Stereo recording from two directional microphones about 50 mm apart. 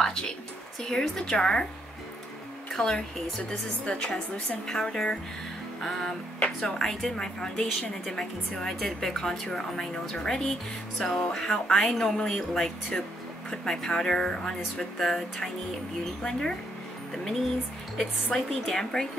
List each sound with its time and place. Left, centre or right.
0.0 s a sound: centre
0.8 s speech: centre
2.7 s speech: centre
5.8 s music: centre
6.4 s speech: centre
17.9 s speech: centre